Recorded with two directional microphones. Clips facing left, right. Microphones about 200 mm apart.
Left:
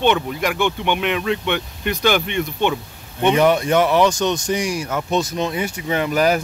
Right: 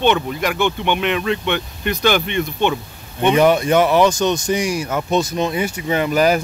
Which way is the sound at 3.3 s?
15° right (ahead or behind).